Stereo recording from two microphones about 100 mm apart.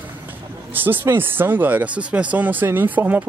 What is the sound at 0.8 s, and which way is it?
Speech, 20° right (ahead or behind).